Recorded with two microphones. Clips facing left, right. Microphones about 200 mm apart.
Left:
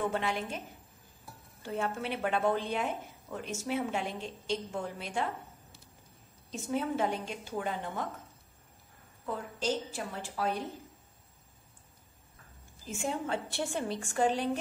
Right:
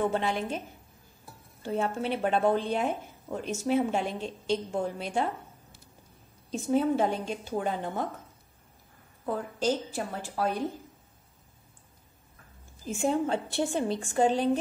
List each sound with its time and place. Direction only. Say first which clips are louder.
0.1 s speech: right 4 dB; 30° right (ahead or behind)
1.6 s speech: right 5 dB; 30° right (ahead or behind)
6.5 s speech: right 7 dB; 30° right (ahead or behind)
9.2 s a woman's voice: right 6 dB; 40° right (ahead or behind)
12.8 s a woman's voice: right 7 dB; 30° right (ahead or behind)